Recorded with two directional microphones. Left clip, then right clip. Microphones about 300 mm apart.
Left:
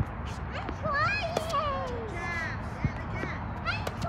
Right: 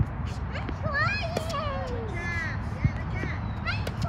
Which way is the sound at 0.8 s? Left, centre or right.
Centre.